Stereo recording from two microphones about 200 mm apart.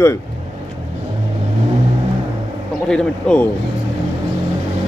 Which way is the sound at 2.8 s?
5° left (ahead or behind).